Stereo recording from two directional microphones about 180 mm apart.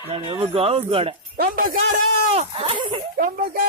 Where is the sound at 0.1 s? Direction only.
30° right (ahead or behind).